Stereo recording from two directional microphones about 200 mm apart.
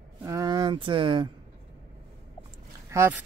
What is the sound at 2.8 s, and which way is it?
Speech, 10° right (ahead or behind).